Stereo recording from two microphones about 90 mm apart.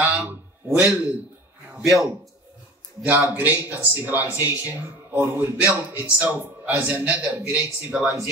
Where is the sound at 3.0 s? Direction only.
20° right (ahead or behind).